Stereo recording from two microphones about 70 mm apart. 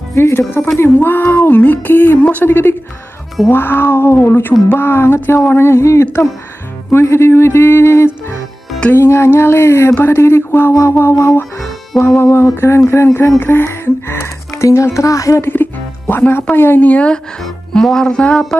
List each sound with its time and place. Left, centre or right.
0.1 s speech: left
15.4 s music: left
16.5 s speech: left
17.4 s speech: centre